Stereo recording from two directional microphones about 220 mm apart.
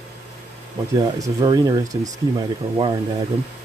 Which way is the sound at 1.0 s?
15° right (ahead or behind).